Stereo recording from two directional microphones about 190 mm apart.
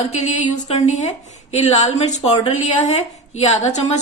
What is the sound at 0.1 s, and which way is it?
A woman's voice, 40° left (ahead or behind).